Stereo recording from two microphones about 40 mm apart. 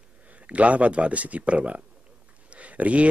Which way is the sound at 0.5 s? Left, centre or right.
Right.